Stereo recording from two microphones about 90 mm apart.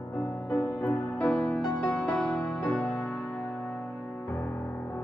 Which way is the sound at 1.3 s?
15° left (ahead or behind).